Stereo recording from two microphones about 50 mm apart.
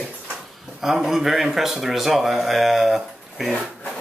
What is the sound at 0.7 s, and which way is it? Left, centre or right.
Speech, centre.